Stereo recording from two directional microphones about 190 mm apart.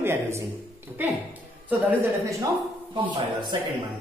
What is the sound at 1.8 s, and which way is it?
Speech, 10° right (ahead or behind).